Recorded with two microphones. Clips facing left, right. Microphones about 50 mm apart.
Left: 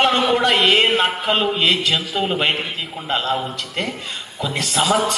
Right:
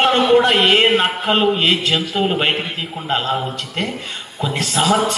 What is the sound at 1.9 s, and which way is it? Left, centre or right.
Speech, centre.